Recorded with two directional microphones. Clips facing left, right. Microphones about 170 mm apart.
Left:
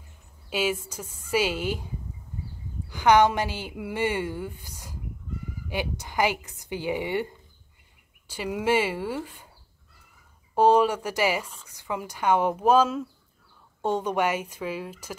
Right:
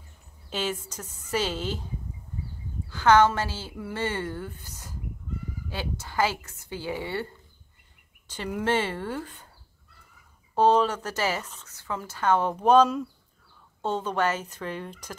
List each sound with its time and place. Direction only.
0.5 s a woman's voice: 10° left (ahead or behind)
2.9 s a woman's voice: 15° left (ahead or behind)
10.5 s a woman's voice: 10° left (ahead or behind)